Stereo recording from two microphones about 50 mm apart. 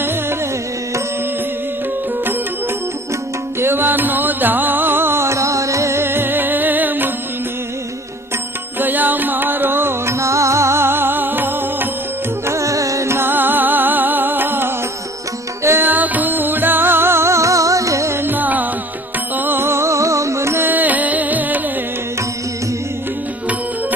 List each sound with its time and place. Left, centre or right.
0.0 s music: right
3.5 s music: right
6.0 s music: right
8.7 s music: right
10.0 s music: right
12.4 s music: right
13.2 s music: right
15.8 s music: right
18.1 s music: right
20.5 s music: right